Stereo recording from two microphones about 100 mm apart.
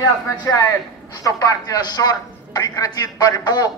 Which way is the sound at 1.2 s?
40° left (ahead or behind).